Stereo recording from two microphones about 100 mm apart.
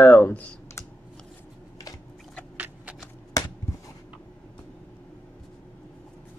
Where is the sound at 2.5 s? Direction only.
15° right (ahead or behind).